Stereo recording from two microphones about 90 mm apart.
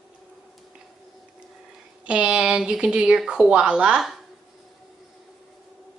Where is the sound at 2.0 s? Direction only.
10° right (ahead or behind).